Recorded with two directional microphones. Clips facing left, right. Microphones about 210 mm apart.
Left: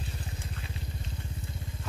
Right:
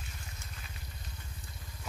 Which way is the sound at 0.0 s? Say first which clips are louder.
Left 9 dB; 30° left (ahead or behind).